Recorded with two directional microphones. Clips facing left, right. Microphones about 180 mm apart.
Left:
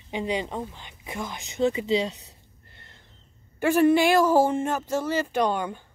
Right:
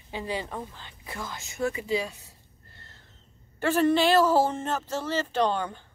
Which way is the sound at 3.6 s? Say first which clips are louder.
Left 3 dB; 10° left (ahead or behind).